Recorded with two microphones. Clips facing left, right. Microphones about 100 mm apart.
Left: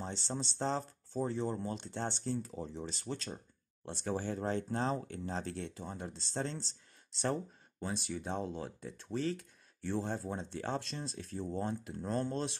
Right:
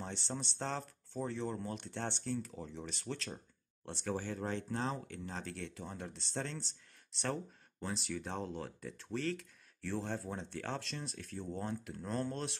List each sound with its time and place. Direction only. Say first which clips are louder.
0.0 s speech: left 2 dB; 20° left (ahead or behind)
7.8 s speech: left 2 dB; 20° left (ahead or behind)